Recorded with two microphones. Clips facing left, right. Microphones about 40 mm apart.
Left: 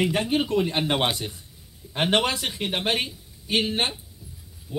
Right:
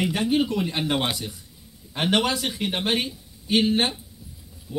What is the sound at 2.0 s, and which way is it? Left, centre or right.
A man's voice, centre.